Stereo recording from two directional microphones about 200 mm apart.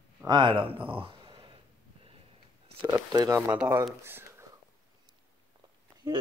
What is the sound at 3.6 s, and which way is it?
Speech, 5° right (ahead or behind).